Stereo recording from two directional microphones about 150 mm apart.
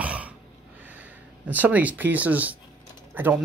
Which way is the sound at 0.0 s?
10° right (ahead or behind).